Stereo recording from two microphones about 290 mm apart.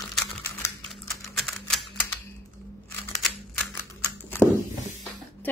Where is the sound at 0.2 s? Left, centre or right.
Centre.